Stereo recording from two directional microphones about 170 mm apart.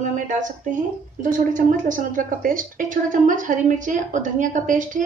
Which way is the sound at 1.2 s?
50° right (ahead or behind).